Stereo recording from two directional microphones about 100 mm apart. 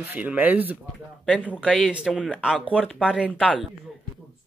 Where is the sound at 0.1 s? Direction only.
15° right (ahead or behind).